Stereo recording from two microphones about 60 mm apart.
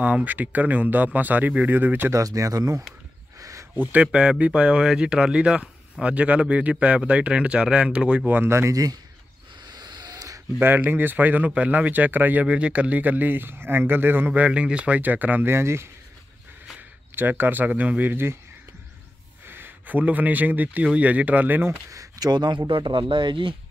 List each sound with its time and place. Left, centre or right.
0.0 s a man's voice: right
2.1 s speech: right
3.3 s a sound: right
3.7 s a man's voice: right
8.5 s speech: right
10.0 s a sound: right
10.6 s a man's voice: right
12.4 s speech: centre; by 14.4 s right
14.4 s a man's voice: centre
15.4 s speech: right
17.1 s speech: right
18.1 s speech: right
19.4 s a man's voice: right
21.9 s a sound: right